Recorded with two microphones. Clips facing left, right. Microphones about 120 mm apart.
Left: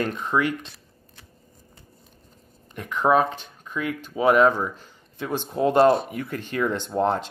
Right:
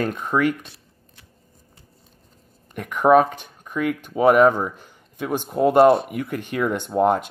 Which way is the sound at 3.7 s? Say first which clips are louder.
Right 5 dB; 55° right (ahead or behind).